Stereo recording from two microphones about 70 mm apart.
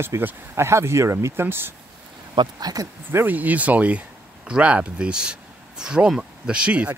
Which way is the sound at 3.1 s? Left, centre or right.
Right.